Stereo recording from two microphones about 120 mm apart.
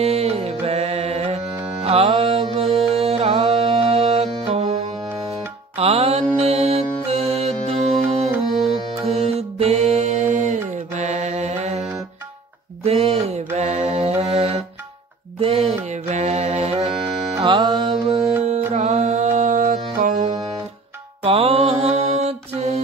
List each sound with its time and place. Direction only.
0.0 s music: 60° right (ahead or behind)
9.0 s music: 55° right (ahead or behind)
12.8 s a sound: 60° right (ahead or behind)
13.6 s mantra: 70° right (ahead or behind); by 16.9 s 55° right (ahead or behind)
17.4 s music: 40° right (ahead or behind)
18.0 s music: 55° right (ahead or behind)
18.7 s music: 70° right (ahead or behind); by 20.3 s 90° right
21.2 s mantra: 50° right (ahead or behind)